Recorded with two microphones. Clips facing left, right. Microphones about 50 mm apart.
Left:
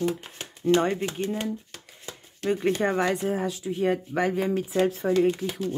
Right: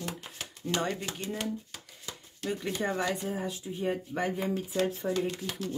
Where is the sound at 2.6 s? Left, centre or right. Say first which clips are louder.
Left 7 dB; left.